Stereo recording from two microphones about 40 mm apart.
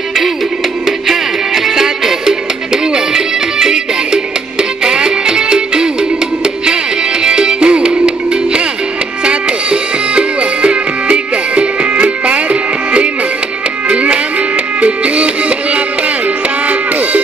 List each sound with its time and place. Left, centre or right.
1.0 s music: centre
3.5 s music: centre
9.2 s music: right